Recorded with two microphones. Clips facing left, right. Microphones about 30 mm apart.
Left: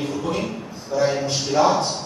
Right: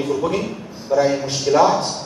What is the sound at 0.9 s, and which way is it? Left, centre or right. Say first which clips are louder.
Speech: right 4 dB; right.